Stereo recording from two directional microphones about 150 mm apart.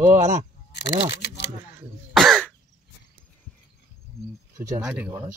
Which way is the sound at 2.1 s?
Centre (ahead or behind).